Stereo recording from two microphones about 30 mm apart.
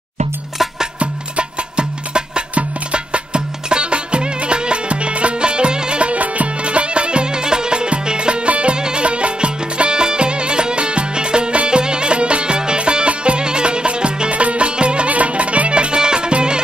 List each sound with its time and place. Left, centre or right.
0.9 s music: right
6.2 s music: right
6.6 s music: right
8.7 s music: right
9.0 s music: right
14.3 s music: right
15.0 s music: right